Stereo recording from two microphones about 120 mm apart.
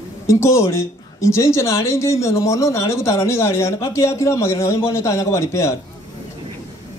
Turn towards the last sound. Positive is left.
turn(degrees=25)  # may be behind; listen again after turning